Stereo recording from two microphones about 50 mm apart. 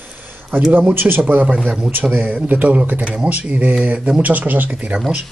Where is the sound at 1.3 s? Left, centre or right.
Right.